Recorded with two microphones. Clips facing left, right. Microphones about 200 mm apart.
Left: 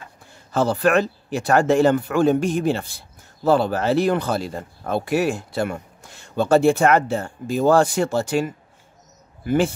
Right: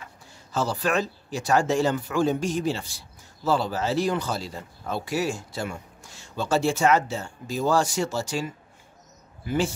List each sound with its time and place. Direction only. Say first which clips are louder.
0.3 s speech: left 7 dB; 55° left (ahead or behind)